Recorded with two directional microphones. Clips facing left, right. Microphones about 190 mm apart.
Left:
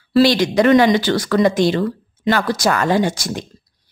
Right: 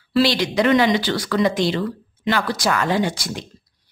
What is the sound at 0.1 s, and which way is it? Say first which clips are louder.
Speech: left 5 dB; 45° left (ahead or behind).